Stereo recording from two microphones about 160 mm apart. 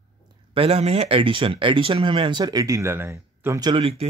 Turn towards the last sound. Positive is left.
turn(degrees=-35)  # may be behind; listen again after turning